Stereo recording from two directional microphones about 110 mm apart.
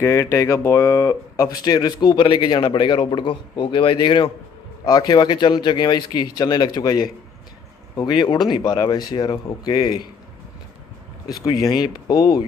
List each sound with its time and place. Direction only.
0.0 s speech: 25° left (ahead or behind); by 4.3 s 45° left (ahead or behind)
4.8 s speech: 35° left (ahead or behind)
8.2 s speech: 40° left (ahead or behind)
11.4 s speech: 35° left (ahead or behind)